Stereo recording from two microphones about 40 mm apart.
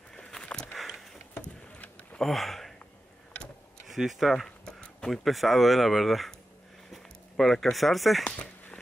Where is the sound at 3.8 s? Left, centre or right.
Centre.